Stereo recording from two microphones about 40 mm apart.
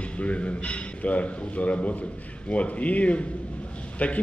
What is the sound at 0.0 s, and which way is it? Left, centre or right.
A man's voice, left.